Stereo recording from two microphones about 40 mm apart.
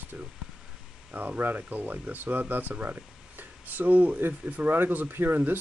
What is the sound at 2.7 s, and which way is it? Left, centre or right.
Speech, right.